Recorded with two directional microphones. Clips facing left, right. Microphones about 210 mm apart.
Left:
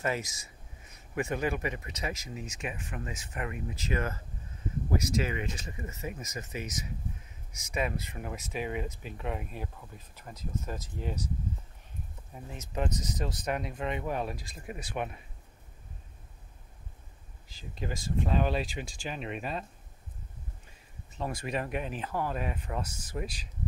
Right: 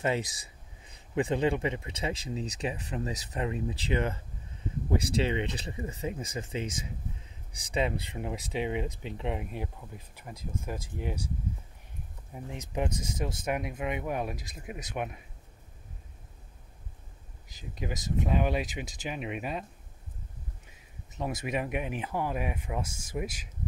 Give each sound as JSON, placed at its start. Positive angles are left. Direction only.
{"t": 0.0, "sound": "speech", "side_deg": -25}
{"t": 12.4, "sound": "speech", "side_deg": -15}
{"t": 17.6, "sound": "speech", "side_deg": -15}
{"t": 21.2, "sound": "speech", "side_deg": -20}